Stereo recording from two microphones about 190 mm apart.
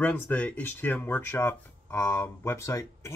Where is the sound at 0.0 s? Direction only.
10° left (ahead or behind).